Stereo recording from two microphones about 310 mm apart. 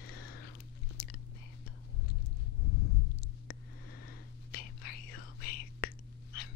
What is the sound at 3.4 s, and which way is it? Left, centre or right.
Whispering, left.